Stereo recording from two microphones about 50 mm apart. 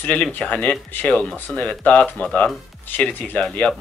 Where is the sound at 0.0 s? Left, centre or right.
Left.